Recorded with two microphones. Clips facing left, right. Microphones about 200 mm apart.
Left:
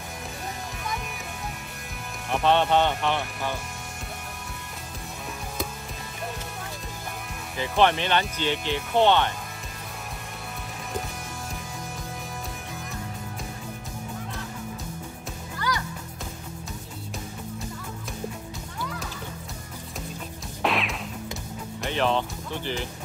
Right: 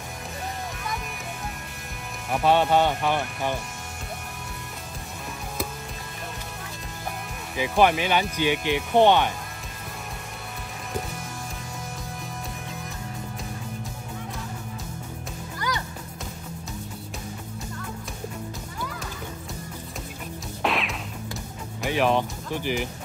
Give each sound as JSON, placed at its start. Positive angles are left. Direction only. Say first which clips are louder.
{"t": 2.3, "sound": "speech", "louder": "right 1 dB", "side_deg": -5}
{"t": 7.5, "sound": "speech", "louder": "right 2 dB", "side_deg": -10}
{"t": 15.7, "sound": "music", "louder": "left 1 dB", "side_deg": -20}
{"t": 20.6, "sound": "music", "louder": "even", "side_deg": 0}
{"t": 21.8, "sound": "speech", "louder": "right 3 dB", "side_deg": -10}